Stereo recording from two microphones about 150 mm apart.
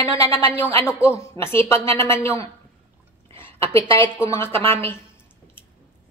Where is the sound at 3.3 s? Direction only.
15° left (ahead or behind).